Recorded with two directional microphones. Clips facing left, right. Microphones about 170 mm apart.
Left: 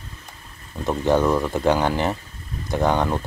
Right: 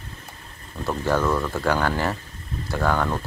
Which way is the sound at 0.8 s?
20° left (ahead or behind).